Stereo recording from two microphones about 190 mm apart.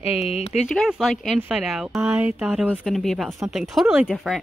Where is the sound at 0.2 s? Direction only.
30° left (ahead or behind).